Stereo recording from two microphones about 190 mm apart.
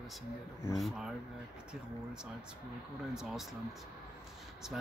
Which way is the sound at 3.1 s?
Centre (ahead or behind).